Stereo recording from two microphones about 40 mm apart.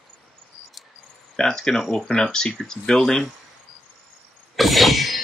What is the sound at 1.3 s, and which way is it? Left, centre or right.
Speech, centre.